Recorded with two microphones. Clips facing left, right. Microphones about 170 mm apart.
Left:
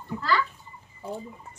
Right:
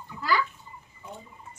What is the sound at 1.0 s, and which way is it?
Speech, 35° left (ahead or behind).